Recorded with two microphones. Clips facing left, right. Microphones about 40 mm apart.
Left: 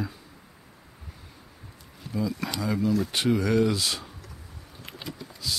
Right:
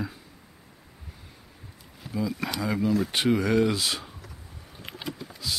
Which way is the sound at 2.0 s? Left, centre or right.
Centre.